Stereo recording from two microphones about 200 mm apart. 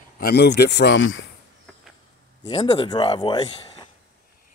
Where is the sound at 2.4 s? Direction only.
25° left (ahead or behind).